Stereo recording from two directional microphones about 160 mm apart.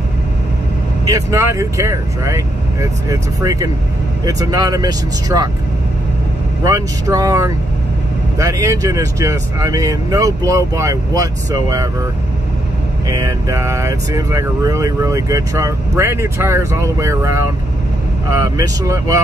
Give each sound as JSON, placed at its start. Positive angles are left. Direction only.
{"t": 1.0, "sound": "speech", "side_deg": -20}
{"t": 6.6, "sound": "speech", "side_deg": -20}
{"t": 13.1, "sound": "speech", "side_deg": -20}